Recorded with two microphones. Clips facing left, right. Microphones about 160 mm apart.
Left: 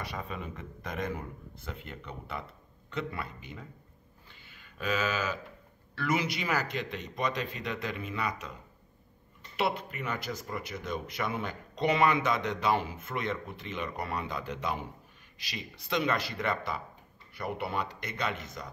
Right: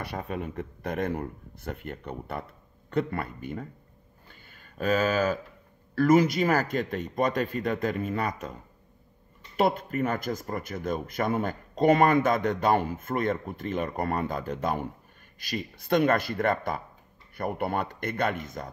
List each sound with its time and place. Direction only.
0.0 s speech: 60° right (ahead or behind)
4.3 s a sound: 45° right (ahead or behind)
5.9 s speech: 45° right (ahead or behind)
9.6 s speech: 45° right (ahead or behind)